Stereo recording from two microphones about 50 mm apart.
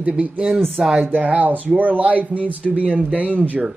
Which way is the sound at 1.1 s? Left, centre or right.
Right.